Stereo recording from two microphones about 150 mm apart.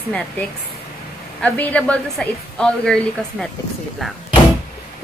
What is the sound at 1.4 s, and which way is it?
A woman's voice, 10° left (ahead or behind).